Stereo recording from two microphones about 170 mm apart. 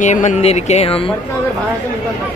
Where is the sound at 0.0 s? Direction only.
45° left (ahead or behind).